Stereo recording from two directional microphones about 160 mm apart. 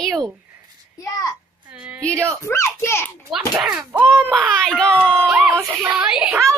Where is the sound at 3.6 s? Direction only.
10° right (ahead or behind).